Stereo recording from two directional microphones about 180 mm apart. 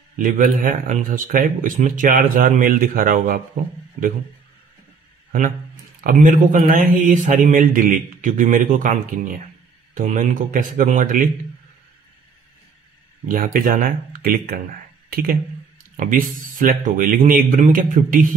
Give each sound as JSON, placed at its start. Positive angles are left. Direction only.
{"t": 0.2, "sound": "a man's voice", "side_deg": -50}
{"t": 5.9, "sound": "a man's voice", "side_deg": -50}
{"t": 13.3, "sound": "a man's voice", "side_deg": -50}